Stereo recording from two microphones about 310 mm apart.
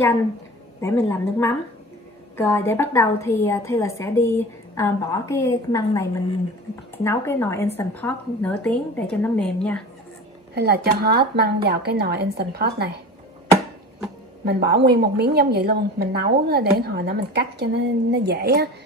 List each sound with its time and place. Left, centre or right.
0.7 s a woman's voice: centre
10.5 s a woman's voice: right
14.4 s a woman's voice: right